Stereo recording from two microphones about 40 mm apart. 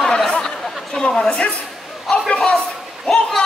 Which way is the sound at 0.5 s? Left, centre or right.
Centre.